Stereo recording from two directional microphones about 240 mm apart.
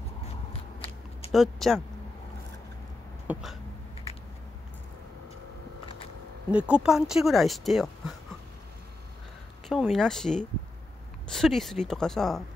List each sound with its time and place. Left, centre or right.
0.5 s biting: left
1.3 s speech: centre
3.3 s a sound: centre
6.5 s speech: centre
9.7 s speech: centre